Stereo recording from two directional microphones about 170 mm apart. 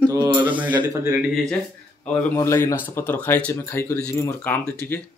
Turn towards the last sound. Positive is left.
turn(degrees=10)  # may be behind; listen again after turning